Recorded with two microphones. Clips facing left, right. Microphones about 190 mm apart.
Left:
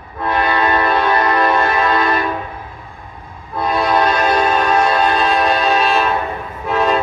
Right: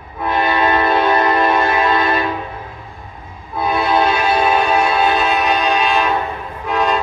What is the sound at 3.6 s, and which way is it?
Music, 5° right (ahead or behind).